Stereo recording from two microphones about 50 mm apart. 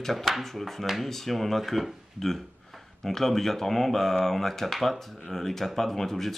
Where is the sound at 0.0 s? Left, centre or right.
Centre.